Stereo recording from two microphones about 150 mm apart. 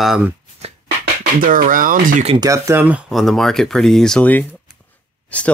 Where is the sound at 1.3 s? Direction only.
65° right (ahead or behind).